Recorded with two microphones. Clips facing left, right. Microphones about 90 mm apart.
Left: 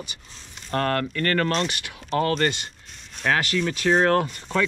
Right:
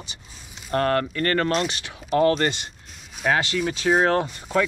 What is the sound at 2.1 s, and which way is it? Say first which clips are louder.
Speech: right 3 dB; 5° right (ahead or behind).